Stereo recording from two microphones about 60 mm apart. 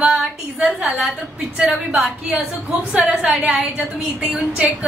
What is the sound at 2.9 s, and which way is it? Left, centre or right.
Speech, centre.